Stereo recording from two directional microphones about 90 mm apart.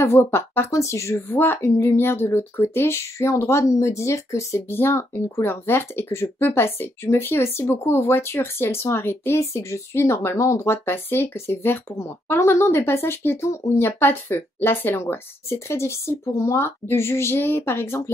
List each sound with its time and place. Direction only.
0.0 s speech: 30° left (ahead or behind)